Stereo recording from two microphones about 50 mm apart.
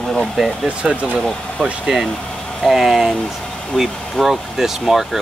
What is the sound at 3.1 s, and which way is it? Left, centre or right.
Speech, centre.